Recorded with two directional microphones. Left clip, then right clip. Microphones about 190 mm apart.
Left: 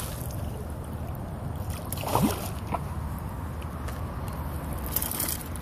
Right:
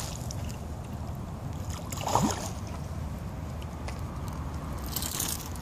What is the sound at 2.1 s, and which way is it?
Boat, 20° left (ahead or behind).